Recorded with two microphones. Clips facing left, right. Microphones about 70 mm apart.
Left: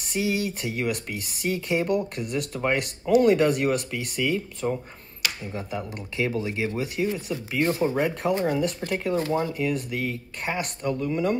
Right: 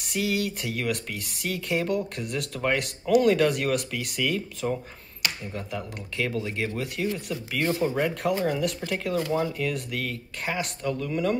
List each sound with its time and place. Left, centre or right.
0.2 s speech: centre
7.8 s speech: centre